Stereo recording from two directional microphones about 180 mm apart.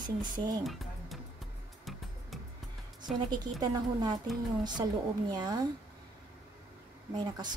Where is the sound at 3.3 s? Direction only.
25° right (ahead or behind).